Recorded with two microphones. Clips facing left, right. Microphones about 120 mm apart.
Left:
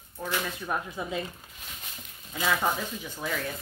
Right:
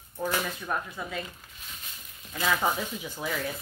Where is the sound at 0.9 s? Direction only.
15° left (ahead or behind).